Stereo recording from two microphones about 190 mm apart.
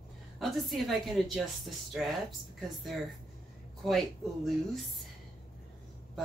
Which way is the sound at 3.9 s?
Centre (ahead or behind).